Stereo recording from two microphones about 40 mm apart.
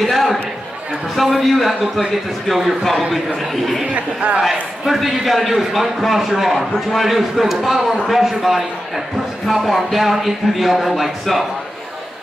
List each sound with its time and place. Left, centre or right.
0.0 s a sound: centre
1.1 s a man's voice: centre
3.9 s speech: right
4.8 s a man's voice: centre